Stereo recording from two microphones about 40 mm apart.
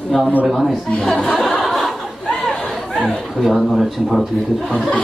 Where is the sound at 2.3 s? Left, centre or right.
Centre.